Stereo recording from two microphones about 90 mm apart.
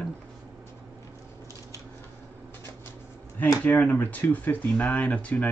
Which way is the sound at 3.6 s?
20° left (ahead or behind).